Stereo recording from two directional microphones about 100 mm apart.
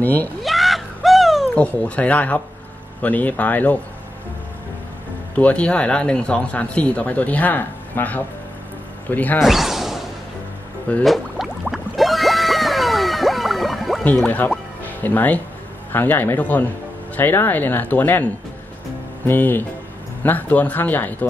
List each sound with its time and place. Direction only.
0.0 s speech: 20° left (ahead or behind)
0.4 s a sound: centre (ahead or behind)
1.8 s speech: 15° left (ahead or behind)
5.3 s speech: 15° left (ahead or behind)
9.4 s a sound: centre (ahead or behind)
11.1 s music: 5° right (ahead or behind)
14.0 s speech: 15° left (ahead or behind)